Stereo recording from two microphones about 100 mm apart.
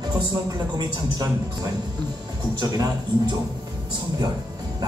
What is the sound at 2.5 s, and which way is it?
Speech, 45° right (ahead or behind).